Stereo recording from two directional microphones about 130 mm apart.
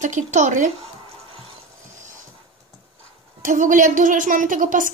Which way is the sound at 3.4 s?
90° right.